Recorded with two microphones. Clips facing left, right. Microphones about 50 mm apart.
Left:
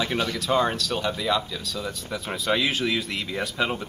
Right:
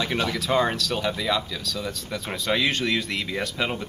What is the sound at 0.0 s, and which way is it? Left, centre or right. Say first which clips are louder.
Speech: even; centre.